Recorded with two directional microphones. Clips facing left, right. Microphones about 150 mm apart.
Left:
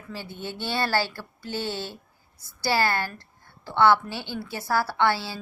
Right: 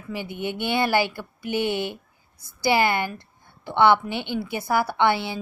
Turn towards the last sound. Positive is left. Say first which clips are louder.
# right 3 dB
turn(degrees=-20)  # may be behind; listen again after turning